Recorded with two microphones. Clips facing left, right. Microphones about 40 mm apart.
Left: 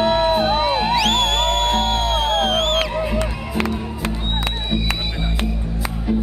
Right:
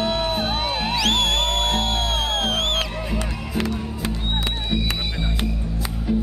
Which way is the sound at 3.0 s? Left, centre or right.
Centre.